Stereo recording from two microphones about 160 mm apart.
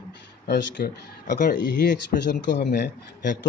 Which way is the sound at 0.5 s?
90° left.